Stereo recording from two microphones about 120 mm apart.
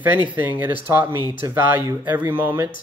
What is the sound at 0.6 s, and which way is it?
Speech, 15° right (ahead or behind).